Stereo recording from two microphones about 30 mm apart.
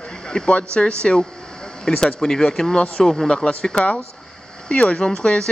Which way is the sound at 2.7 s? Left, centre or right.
Left.